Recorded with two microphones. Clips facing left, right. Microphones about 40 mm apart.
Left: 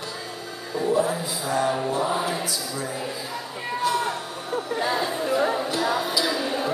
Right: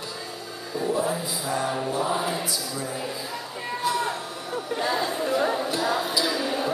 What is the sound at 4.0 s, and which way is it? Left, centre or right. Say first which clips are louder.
Music: left 1 dB; left.